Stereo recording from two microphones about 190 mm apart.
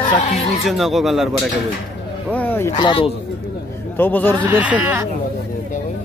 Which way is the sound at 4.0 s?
10° left (ahead or behind).